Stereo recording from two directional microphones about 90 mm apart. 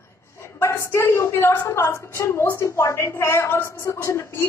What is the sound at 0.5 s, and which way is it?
A woman's voice, 30° left (ahead or behind).